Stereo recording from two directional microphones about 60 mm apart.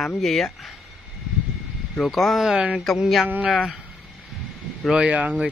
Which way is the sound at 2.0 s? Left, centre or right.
Centre.